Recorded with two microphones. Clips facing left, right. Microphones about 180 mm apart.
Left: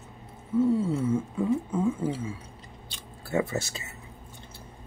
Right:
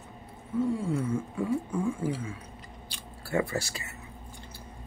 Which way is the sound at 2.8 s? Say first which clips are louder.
Left 1 dB; 20° left (ahead or behind).